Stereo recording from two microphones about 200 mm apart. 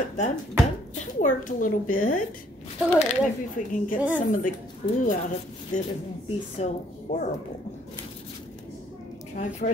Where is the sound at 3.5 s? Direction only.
40° left (ahead or behind).